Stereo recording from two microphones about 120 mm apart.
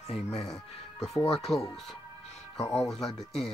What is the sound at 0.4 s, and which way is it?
Speech, centre (ahead or behind).